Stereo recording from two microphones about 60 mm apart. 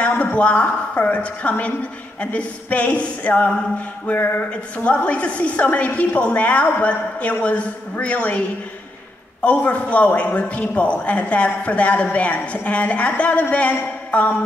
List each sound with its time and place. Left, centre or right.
0.0 s a woman's voice: left